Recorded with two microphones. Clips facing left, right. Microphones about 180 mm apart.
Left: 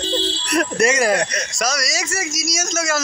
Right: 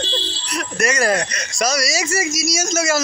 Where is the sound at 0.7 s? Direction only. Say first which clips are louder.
Left 1 dB; 25° left (ahead or behind).